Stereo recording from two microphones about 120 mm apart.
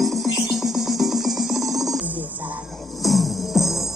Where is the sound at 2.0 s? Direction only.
15° right (ahead or behind).